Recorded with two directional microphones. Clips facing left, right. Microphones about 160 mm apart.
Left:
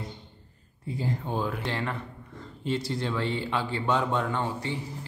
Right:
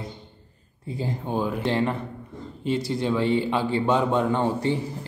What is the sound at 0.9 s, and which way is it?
Speech, 20° right (ahead or behind).